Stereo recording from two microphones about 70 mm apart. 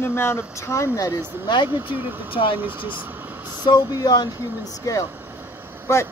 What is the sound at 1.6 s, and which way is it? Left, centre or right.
Speech, right.